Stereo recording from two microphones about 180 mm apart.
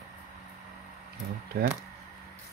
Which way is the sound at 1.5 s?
55° right (ahead or behind).